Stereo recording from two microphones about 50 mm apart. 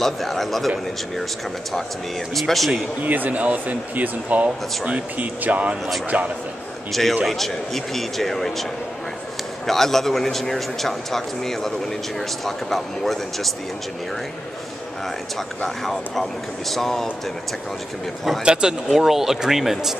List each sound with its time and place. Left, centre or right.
0.0 s speech: centre
3.1 s speech: right
6.9 s speech: centre
9.7 s speech: centre
15.0 s speech: centre
18.4 s speech: centre